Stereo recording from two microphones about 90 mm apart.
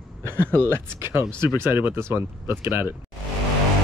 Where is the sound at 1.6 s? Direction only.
25° right (ahead or behind).